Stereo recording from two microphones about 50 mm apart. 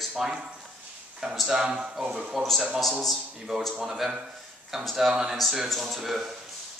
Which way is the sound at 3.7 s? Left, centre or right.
Centre.